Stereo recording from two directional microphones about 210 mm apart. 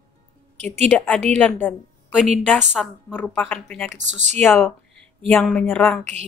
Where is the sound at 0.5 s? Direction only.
30° right (ahead or behind).